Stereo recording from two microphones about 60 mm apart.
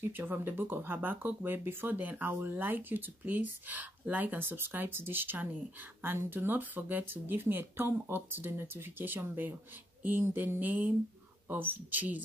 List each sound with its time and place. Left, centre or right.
0.0 s speech: right